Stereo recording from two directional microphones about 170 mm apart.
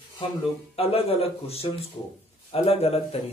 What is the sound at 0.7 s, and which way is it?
Speech, 35° left (ahead or behind).